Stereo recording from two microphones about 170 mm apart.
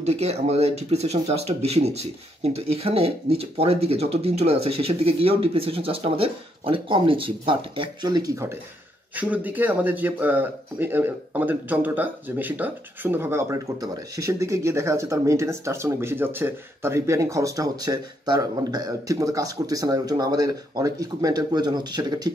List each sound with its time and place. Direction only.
0.0 s speech: 40° right (ahead or behind); by 22.3 s 25° right (ahead or behind)